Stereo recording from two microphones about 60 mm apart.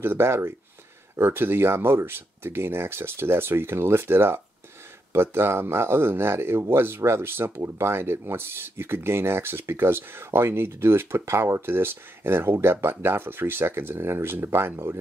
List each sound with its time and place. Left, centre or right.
0.0 s speech: right